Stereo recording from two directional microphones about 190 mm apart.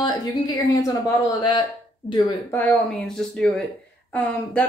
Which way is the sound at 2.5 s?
10° left (ahead or behind).